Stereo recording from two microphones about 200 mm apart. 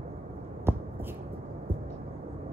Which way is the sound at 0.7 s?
10° right (ahead or behind).